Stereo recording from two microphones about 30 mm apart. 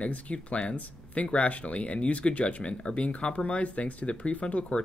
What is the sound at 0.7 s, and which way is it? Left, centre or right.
Speech, left.